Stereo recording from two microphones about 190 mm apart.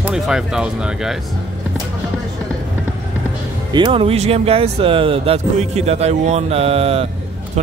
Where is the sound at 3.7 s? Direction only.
25° right (ahead or behind).